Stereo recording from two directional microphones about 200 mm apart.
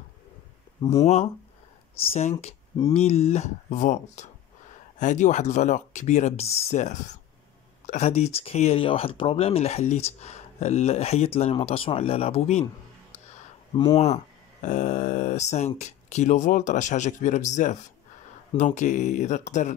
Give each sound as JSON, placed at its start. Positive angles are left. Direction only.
{"t": 0.8, "sound": "speech", "side_deg": 30}
{"t": 13.7, "sound": "speech", "side_deg": 20}
{"t": 14.0, "sound": "speech", "side_deg": 35}